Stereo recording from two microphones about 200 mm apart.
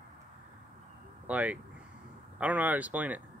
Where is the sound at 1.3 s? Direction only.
5° right (ahead or behind).